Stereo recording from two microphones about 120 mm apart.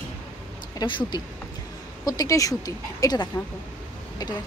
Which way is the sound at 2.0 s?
30° left (ahead or behind).